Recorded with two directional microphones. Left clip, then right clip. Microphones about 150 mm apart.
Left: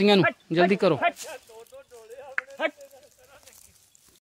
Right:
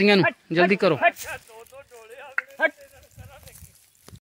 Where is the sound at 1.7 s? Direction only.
25° right (ahead or behind).